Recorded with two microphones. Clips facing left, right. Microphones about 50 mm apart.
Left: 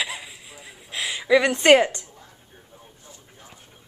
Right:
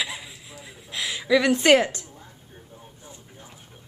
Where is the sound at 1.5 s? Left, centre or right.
Centre.